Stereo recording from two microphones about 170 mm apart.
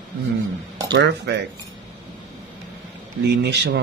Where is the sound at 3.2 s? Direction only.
80° right.